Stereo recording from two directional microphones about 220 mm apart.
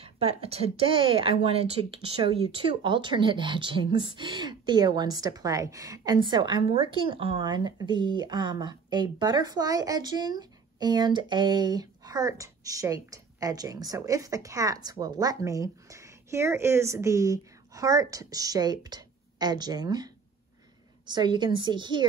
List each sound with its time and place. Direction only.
0.0 s a woman's voice: 25° right (ahead or behind)
21.1 s speech: 20° right (ahead or behind)